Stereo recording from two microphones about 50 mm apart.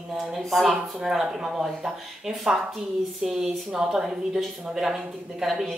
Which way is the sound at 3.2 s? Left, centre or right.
Centre.